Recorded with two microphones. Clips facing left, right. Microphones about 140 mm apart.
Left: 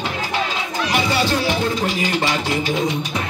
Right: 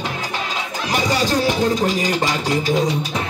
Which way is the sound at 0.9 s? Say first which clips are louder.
Right 1 dB; 40° right (ahead or behind).